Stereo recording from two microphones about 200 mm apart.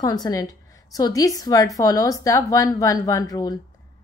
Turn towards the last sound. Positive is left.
turn(degrees=20)  # may be behind; listen again after turning